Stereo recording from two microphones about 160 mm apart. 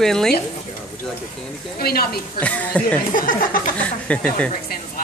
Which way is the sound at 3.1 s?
60° left (ahead or behind).